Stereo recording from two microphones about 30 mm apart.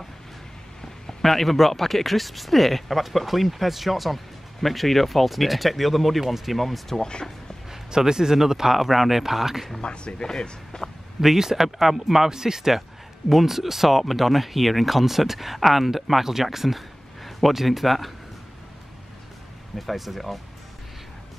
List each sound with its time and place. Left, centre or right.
1.2 s speech: centre
7.0 s speech: left
7.7 s speech: centre
8.7 s speech: centre
9.8 s speech: left
10.2 s speech: left
11.1 s speech: centre
19.9 s speech: centre